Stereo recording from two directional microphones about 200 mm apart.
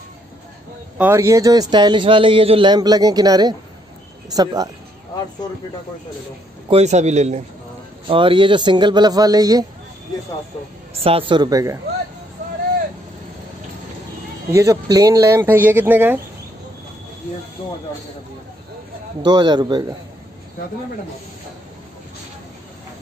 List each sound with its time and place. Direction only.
0.9 s a man's voice: 10° right (ahead or behind)
6.7 s a man's voice: 35° right (ahead or behind); by 9.7 s 20° right (ahead or behind)
11.0 s a man's voice: 25° right (ahead or behind)
14.5 s speech: 15° right (ahead or behind)
19.2 s a man's voice: 20° right (ahead or behind)